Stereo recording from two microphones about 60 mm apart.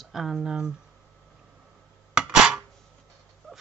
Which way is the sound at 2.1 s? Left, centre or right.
Centre.